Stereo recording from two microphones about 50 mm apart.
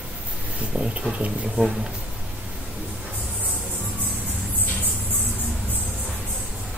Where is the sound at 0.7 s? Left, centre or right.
Right.